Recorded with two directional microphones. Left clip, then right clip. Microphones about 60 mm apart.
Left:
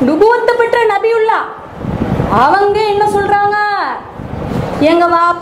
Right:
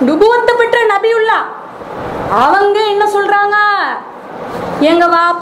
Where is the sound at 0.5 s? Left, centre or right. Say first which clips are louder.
Right 1 dB; right.